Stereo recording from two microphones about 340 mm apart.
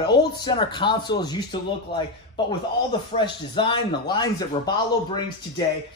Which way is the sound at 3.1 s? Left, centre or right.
Centre.